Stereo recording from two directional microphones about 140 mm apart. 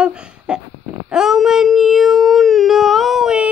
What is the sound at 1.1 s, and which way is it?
Speech, 5° right (ahead or behind).